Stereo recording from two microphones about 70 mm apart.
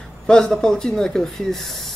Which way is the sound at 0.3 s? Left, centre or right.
Centre.